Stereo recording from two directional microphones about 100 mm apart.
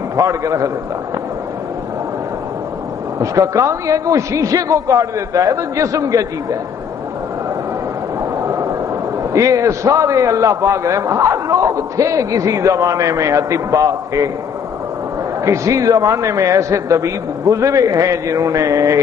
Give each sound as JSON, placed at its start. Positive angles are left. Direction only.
{"t": 0.1, "sound": "a man's voice", "side_deg": -30}
{"t": 3.2, "sound": "a man's voice", "side_deg": -30}
{"t": 8.4, "sound": "a sound", "side_deg": -30}
{"t": 9.3, "sound": "a man's voice", "side_deg": -30}
{"t": 15.4, "sound": "a man's voice", "side_deg": -30}